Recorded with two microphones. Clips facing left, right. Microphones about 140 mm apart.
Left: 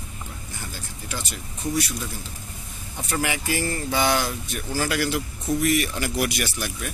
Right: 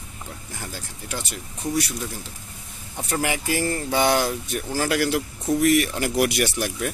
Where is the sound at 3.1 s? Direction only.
45° right (ahead or behind).